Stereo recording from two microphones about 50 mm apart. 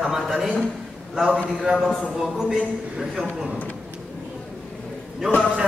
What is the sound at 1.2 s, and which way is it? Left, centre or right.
A man's voice, centre.